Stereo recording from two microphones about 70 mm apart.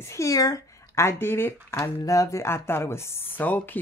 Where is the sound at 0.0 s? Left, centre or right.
Left.